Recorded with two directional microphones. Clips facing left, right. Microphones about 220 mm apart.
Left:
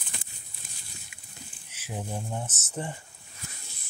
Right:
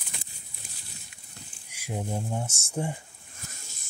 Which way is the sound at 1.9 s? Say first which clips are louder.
Right 3 dB; centre (ahead or behind).